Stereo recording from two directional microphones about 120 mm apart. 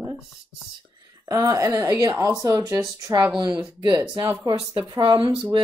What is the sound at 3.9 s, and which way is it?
Speech, 30° right (ahead or behind).